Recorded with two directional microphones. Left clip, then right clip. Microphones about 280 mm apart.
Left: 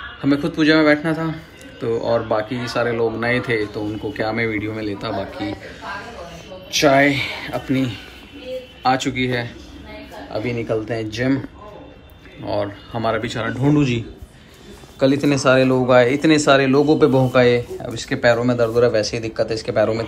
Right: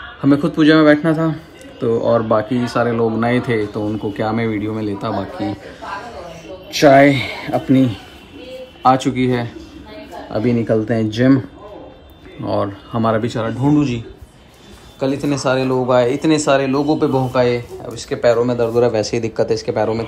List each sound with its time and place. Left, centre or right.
0.2 s a man's voice: right
6.9 s a man's voice: right
12.4 s a man's voice: right